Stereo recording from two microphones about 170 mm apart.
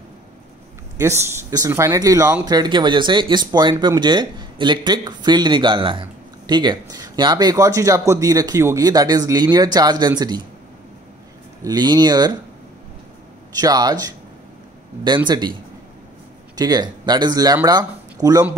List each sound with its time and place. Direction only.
0.9 s speech: 15° right (ahead or behind)
11.6 s speech: 25° right (ahead or behind)
13.6 s speech: 25° right (ahead or behind)
15.2 s speech: 25° right (ahead or behind)
16.5 s speech: 25° right (ahead or behind)